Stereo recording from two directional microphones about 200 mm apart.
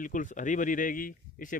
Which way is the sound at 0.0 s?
40° left (ahead or behind).